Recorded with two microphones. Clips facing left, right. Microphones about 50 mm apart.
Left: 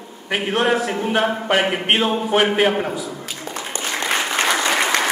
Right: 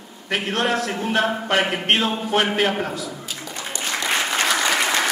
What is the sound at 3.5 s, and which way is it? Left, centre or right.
Applause, left.